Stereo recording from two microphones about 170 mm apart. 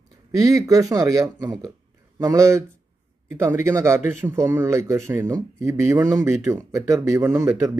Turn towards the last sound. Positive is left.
turn(degrees=-15)  # may be behind; listen again after turning